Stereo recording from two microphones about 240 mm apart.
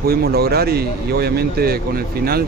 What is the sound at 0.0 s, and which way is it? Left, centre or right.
Speech, right.